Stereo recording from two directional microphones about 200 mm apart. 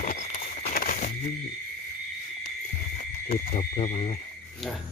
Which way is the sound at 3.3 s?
30° left (ahead or behind).